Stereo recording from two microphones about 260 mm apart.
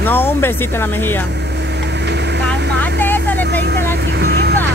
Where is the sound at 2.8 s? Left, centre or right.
Centre.